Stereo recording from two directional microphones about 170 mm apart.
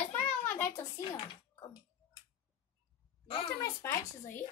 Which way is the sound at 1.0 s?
30° left (ahead or behind).